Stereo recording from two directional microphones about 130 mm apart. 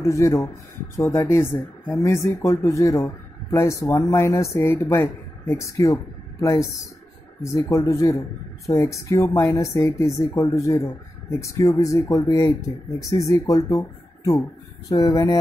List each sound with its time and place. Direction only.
0.0 s speech: 25° left (ahead or behind)
7.5 s speech: 25° left (ahead or behind)